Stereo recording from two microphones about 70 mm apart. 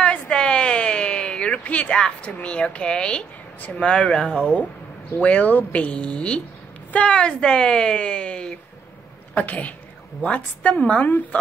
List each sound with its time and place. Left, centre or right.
0.0 s a sound: centre
2.4 s speech: centre
5.2 s a woman's voice: left